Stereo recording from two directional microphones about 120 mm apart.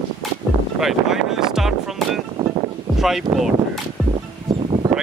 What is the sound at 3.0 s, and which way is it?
Speech, 5° right (ahead or behind).